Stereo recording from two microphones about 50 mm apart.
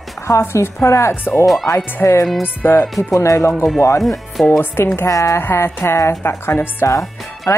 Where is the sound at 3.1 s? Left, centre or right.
Left.